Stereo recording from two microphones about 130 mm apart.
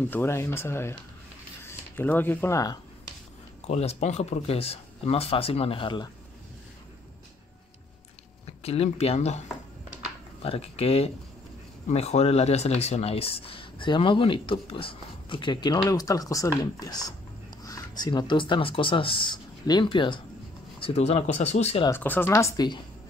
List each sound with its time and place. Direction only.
0.1 s speech: 20° left (ahead or behind)
3.6 s speech: 55° left (ahead or behind); by 6.0 s 40° left (ahead or behind)
8.6 s speech: 50° left (ahead or behind)
10.4 s speech: 50° left (ahead or behind)
20.8 s speech: 55° left (ahead or behind)
21.9 s speech: 15° left (ahead or behind)